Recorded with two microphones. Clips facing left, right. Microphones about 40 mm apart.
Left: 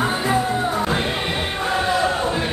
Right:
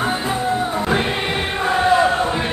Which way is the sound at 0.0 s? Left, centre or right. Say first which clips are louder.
Left 1 dB; centre.